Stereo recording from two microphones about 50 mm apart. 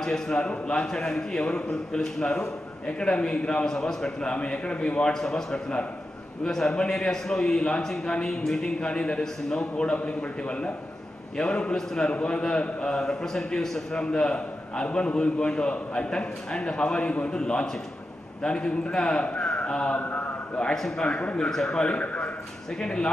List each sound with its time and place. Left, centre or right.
0.0 s a man's voice: centre
5.1 s a man's voice: centre
20.0 s a man's voice: left
20.7 s a man's voice: centre
21.1 s a man's voice: left
21.5 s a man's voice: centre
21.9 s a man's voice: left
22.8 s a man's voice: centre